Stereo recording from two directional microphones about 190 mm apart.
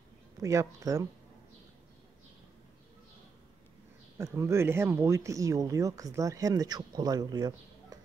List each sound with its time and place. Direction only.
0.4 s speech: 15° right (ahead or behind)
4.2 s speech: 15° right (ahead or behind)